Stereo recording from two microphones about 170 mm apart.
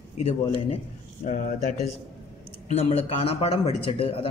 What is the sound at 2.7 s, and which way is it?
Speech, 35° left (ahead or behind).